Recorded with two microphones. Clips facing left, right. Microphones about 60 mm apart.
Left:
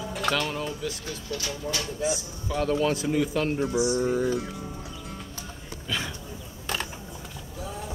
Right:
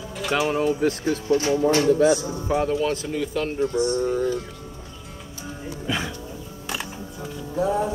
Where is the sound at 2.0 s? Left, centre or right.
Right.